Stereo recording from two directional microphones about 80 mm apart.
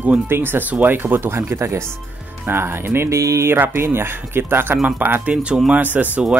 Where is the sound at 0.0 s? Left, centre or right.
Right.